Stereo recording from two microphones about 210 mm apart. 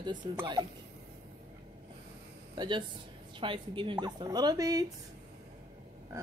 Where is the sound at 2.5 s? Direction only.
20° right (ahead or behind).